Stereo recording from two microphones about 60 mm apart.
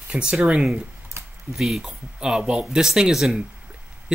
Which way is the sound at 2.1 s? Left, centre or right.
Centre.